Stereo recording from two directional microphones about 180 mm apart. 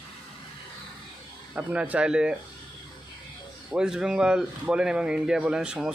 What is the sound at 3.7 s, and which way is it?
A man's voice, 5° right (ahead or behind).